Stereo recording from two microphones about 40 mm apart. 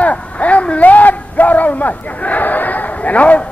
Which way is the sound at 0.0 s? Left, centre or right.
Left.